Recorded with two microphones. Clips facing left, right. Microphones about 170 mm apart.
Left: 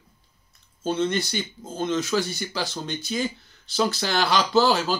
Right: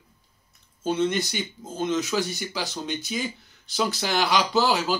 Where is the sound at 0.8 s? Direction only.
15° right (ahead or behind).